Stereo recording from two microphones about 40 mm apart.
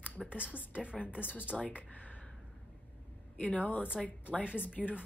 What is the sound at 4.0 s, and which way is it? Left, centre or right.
Speech, centre.